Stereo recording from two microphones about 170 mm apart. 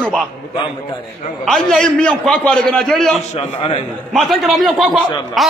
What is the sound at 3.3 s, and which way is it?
Speech, 30° left (ahead or behind).